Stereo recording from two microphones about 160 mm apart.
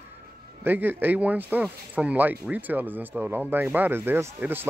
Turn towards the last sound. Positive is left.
turn(degrees=-10)  # may be behind; listen again after turning